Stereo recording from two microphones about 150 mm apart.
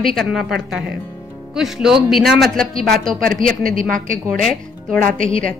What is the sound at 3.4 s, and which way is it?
Speech, 65° right (ahead or behind).